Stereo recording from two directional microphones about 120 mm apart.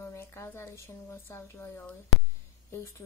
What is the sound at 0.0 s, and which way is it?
Speech, 25° left (ahead or behind).